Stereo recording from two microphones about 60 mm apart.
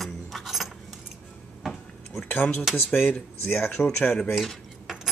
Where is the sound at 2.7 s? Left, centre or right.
Left.